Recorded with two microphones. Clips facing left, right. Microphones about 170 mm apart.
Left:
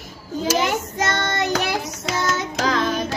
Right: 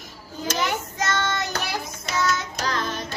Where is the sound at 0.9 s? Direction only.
60° left (ahead or behind); by 3.1 s 90° left.